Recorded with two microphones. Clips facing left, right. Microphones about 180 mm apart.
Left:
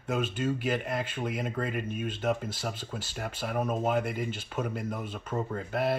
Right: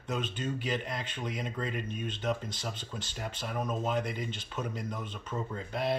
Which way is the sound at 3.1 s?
55° left (ahead or behind).